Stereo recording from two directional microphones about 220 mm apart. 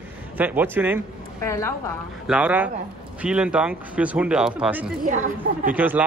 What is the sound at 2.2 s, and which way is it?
Speech, 5° right (ahead or behind).